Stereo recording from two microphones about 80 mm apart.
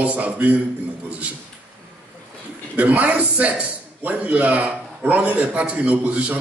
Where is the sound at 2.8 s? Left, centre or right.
Centre.